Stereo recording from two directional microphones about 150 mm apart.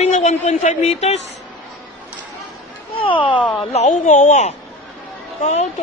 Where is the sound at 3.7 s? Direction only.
50° left (ahead or behind).